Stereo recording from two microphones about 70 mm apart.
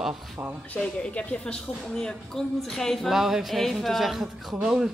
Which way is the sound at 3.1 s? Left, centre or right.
Centre.